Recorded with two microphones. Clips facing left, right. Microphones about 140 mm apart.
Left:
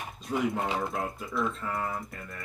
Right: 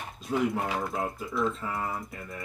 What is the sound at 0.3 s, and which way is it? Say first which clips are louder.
Speech: right 1 dB; 20° left (ahead or behind).